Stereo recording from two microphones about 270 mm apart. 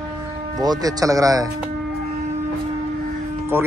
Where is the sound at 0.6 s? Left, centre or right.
Centre.